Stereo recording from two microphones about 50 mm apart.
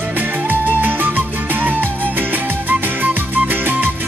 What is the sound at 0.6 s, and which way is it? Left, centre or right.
Music, right.